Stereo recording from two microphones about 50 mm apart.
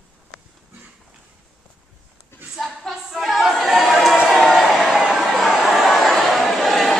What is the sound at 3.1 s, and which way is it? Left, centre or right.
A capella, centre.